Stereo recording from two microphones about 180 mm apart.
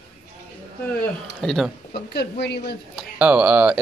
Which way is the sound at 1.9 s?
60° left (ahead or behind).